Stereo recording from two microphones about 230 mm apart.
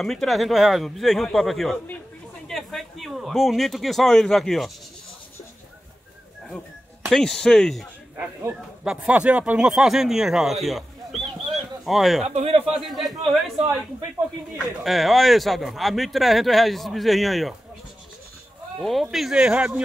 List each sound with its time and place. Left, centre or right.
0.0 s speech: centre
7.1 s speech: centre
12.4 s a man's voice: right
12.8 s speech: centre
14.8 s speech: centre
18.8 s speech: centre